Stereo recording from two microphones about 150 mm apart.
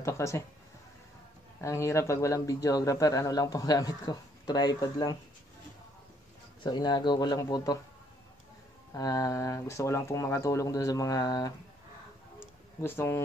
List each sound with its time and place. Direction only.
0.0 s speech: 20° left (ahead or behind)
1.6 s speech: 20° left (ahead or behind)
6.6 s speech: 30° left (ahead or behind)
8.9 s speech: 25° left (ahead or behind)
12.4 s a sound: 15° left (ahead or behind)